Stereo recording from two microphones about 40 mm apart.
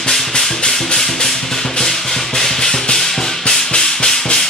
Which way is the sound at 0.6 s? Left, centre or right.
Centre.